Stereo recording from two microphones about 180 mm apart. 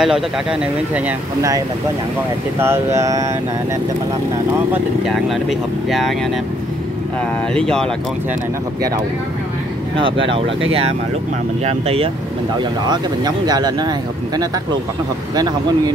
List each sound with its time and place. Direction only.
0.0 s speech: 5° right (ahead or behind)
2.6 s speech: 15° right (ahead or behind)
5.0 s speech: centre (ahead or behind)
7.5 s speech: 5° left (ahead or behind)
10.7 s speech: 35° right (ahead or behind)
12.8 s speech: 20° right (ahead or behind)